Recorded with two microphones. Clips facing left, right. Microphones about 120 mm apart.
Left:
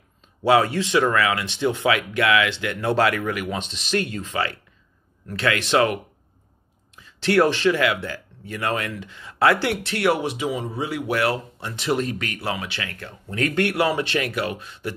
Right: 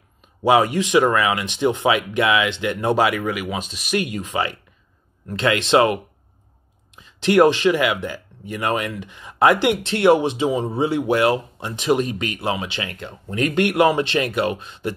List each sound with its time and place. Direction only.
0.4 s speech: 15° right (ahead or behind)
7.0 s speech: 20° right (ahead or behind)